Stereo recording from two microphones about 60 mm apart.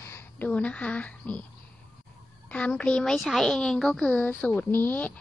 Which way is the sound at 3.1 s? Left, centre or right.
Centre.